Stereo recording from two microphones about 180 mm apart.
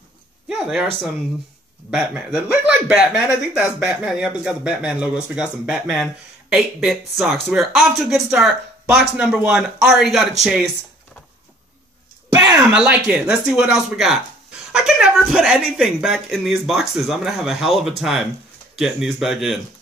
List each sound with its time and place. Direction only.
0.5 s speech: centre (ahead or behind)
1.9 s speech: 5° right (ahead or behind)
12.3 s a sound: 15° right (ahead or behind)
12.7 s speech: 5° right (ahead or behind)